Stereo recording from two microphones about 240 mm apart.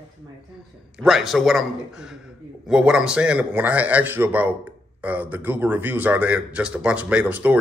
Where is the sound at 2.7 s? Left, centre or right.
Centre.